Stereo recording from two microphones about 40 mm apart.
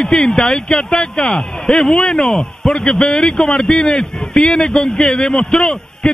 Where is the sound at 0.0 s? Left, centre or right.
Centre.